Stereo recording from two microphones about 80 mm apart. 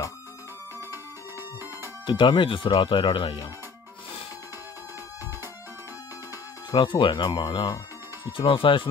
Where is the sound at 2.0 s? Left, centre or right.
Left.